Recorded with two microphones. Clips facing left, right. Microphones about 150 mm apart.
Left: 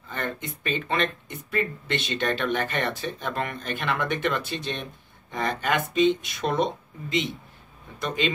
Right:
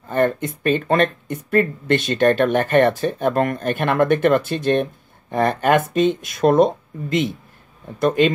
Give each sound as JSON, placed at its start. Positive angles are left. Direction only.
{"t": 0.1, "sound": "speech", "side_deg": -50}